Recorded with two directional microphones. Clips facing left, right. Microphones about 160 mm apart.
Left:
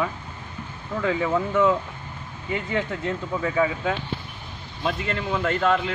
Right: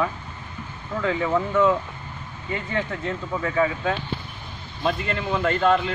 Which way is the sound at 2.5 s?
15° left (ahead or behind).